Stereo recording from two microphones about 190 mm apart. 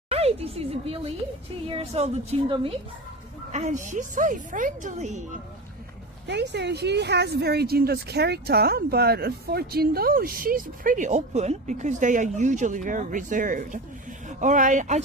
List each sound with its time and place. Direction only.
0.1 s a woman's voice: 30° right (ahead or behind)
3.5 s a woman's voice: 40° right (ahead or behind)
6.2 s a woman's voice: 65° right (ahead or behind); by 15.0 s 40° right (ahead or behind)